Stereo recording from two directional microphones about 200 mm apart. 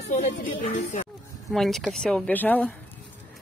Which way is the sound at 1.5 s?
Centre (ahead or behind).